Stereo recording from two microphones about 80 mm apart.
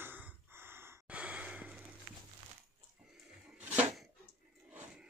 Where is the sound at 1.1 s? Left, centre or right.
Centre.